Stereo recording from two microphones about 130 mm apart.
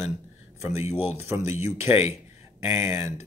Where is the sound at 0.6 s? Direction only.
55° left (ahead or behind).